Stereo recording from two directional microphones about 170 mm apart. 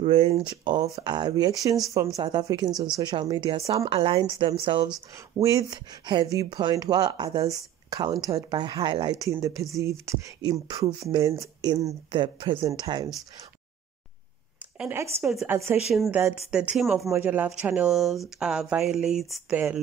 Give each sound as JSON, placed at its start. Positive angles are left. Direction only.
{"t": 0.0, "sound": "speech", "side_deg": -35}
{"t": 5.4, "sound": "speech", "side_deg": -20}
{"t": 14.8, "sound": "speech", "side_deg": -15}
{"t": 15.9, "sound": "speech", "side_deg": 0}
{"t": 17.1, "sound": "speech", "side_deg": -10}